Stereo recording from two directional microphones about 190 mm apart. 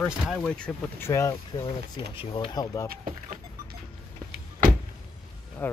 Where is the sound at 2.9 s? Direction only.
45° right (ahead or behind).